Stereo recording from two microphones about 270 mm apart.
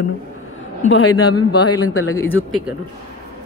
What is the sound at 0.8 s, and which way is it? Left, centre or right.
Speech, left.